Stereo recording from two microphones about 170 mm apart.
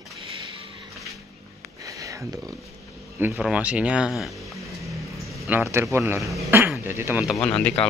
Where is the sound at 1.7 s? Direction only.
20° right (ahead or behind).